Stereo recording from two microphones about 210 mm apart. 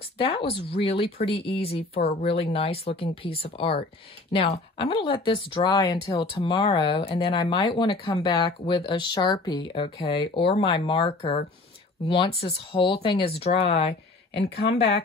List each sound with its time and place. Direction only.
0.2 s speech: 25° left (ahead or behind)
14.3 s speech: 50° left (ahead or behind)